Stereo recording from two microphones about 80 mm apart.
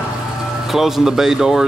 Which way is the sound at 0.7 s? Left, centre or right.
Centre.